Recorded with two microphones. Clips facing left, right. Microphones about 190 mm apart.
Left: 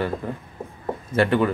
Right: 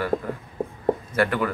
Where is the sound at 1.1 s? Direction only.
25° left (ahead or behind).